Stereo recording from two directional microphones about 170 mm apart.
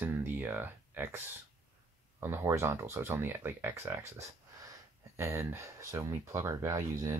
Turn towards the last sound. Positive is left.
turn(degrees=-15)  # may be behind; listen again after turning